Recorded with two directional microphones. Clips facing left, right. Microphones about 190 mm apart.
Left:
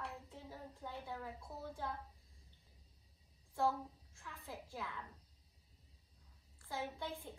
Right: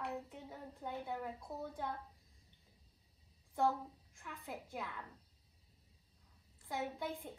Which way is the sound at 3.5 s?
15° right (ahead or behind).